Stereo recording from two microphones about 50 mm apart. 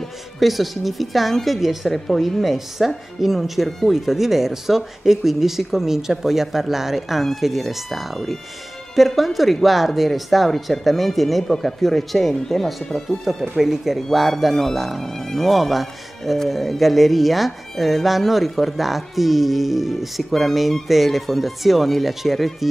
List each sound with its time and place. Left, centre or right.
0.4 s speech: centre